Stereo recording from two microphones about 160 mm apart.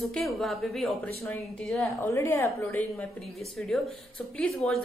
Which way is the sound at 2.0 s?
15° left (ahead or behind).